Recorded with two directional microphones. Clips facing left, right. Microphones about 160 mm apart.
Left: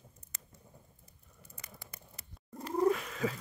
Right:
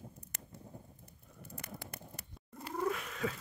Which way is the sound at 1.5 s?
60° right (ahead or behind).